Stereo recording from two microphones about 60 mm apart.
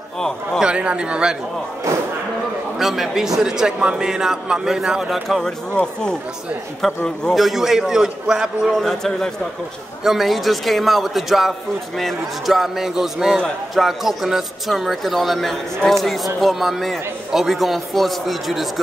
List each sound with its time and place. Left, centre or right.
0.6 s a man's voice: centre
2.8 s a man's voice: centre
5.7 s speech: centre